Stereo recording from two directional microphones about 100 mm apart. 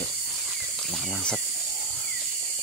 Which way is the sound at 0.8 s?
Centre (ahead or behind).